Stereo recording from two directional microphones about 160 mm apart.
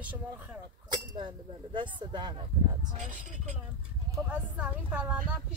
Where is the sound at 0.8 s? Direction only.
30° right (ahead or behind).